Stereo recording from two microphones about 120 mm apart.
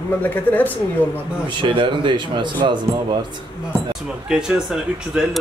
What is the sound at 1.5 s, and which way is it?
A man's voice, 45° right (ahead or behind).